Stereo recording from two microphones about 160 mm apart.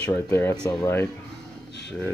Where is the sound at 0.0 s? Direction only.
10° left (ahead or behind).